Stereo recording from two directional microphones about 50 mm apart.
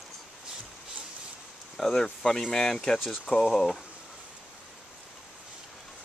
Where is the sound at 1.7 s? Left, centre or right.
Centre.